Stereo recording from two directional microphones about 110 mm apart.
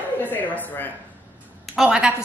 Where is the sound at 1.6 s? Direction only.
5° right (ahead or behind).